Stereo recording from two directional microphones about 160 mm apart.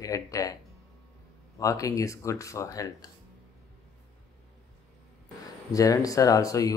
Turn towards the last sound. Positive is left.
turn(degrees=20)  # may be behind; listen again after turning